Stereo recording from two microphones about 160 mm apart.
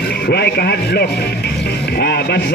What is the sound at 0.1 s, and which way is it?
Speech, 85° left.